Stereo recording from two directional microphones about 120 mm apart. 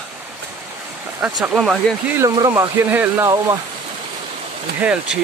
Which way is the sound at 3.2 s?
30° right (ahead or behind).